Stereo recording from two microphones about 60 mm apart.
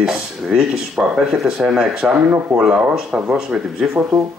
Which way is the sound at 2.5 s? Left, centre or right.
Centre.